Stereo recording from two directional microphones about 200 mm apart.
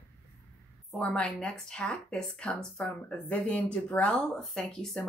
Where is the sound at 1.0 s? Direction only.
5° left (ahead or behind).